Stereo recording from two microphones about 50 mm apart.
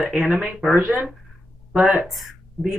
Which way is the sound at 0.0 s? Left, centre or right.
Centre.